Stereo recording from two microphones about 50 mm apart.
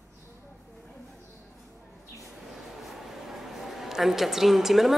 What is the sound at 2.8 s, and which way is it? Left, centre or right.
A woman's voice, centre.